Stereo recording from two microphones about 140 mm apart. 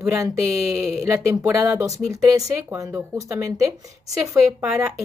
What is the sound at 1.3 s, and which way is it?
Speech, 20° right (ahead or behind).